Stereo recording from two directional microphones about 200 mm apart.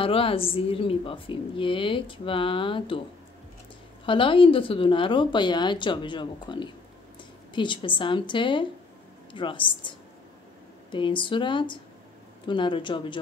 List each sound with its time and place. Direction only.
0.0 s a woman's voice: 25° left (ahead or behind)
4.0 s a woman's voice: 25° left (ahead or behind)